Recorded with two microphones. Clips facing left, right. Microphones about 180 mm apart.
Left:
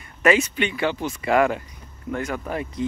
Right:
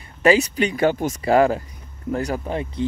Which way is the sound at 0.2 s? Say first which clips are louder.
Right 3 dB; 35° right (ahead or behind).